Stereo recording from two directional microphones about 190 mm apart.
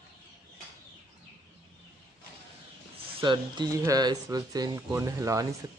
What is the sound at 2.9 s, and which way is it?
Speech, 25° right (ahead or behind).